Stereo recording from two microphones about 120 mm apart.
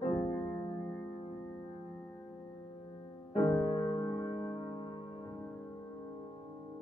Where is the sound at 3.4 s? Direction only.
35° left (ahead or behind).